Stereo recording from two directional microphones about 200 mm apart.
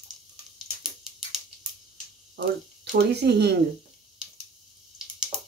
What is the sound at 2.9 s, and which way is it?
Speech, 55° right (ahead or behind).